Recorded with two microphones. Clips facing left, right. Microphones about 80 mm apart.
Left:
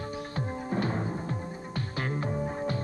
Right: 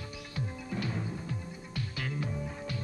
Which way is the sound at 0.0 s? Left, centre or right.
Left.